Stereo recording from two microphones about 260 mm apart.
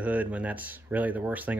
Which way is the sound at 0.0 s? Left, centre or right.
Centre.